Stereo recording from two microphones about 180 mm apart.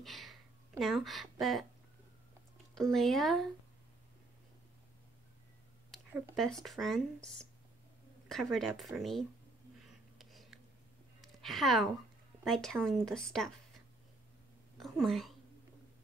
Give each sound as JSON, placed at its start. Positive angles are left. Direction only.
{"t": 0.0, "sound": "a sound", "side_deg": 0}
{"t": 2.7, "sound": "speech", "side_deg": 0}
{"t": 5.9, "sound": "speech", "side_deg": 0}
{"t": 8.3, "sound": "speech", "side_deg": 0}
{"t": 9.8, "sound": "a sound", "side_deg": 0}
{"t": 12.4, "sound": "speech", "side_deg": 0}
{"t": 14.8, "sound": "speech", "side_deg": 0}